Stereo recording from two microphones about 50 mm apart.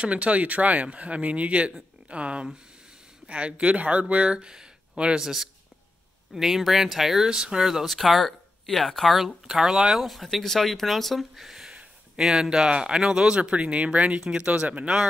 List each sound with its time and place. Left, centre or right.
0.0 s speech: right
5.2 s speech: centre
9.5 s speech: centre